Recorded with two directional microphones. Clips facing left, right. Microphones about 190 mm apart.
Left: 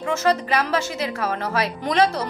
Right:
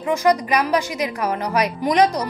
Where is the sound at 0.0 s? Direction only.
15° right (ahead or behind).